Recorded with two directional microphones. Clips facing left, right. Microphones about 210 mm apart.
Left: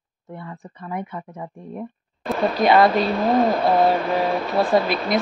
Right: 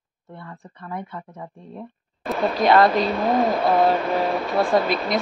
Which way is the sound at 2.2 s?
Centre (ahead or behind).